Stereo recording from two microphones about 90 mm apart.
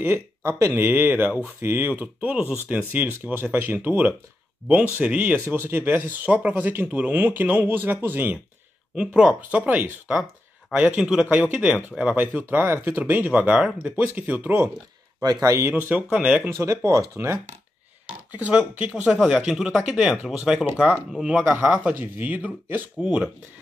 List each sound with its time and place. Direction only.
0.0 s speech: 30° right (ahead or behind)
0.8 s speech: 20° right (ahead or behind)
8.9 s speech: 10° right (ahead or behind)
15.2 s speech: 35° right (ahead or behind)
15.7 s speech: 20° right (ahead or behind)
16.5 s speech: 35° right (ahead or behind)
18.3 s speech: 15° right (ahead or behind)